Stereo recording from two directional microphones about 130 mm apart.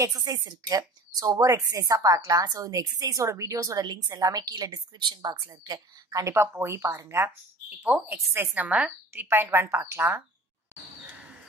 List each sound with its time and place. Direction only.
0.0 s a woman's voice: 25° right (ahead or behind)
6.3 s a woman's voice: 20° right (ahead or behind)
10.7 s a sound: 10° right (ahead or behind)